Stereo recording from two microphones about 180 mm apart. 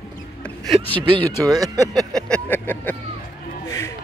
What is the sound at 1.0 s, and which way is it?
Speech, 25° right (ahead or behind).